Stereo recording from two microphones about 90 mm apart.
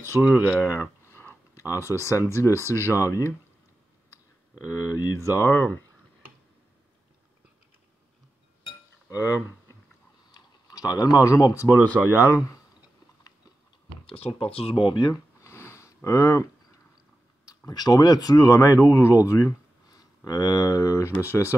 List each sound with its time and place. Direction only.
0.2 s speech: 10° right (ahead or behind)
0.7 s a sound: 25° left (ahead or behind)
1.6 s speech: 35° left (ahead or behind)
9.1 s speech: 40° left (ahead or behind)
10.3 s typing: 45° left (ahead or behind)
11.1 s speech: 40° left (ahead or behind)
14.0 s speech: 90° left
15.4 s sniff: 30° left (ahead or behind)
17.6 s speech: 45° left (ahead or behind); by 21.5 s 30° left (ahead or behind)